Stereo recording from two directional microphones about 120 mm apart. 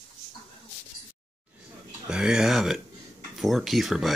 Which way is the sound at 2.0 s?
5° right (ahead or behind).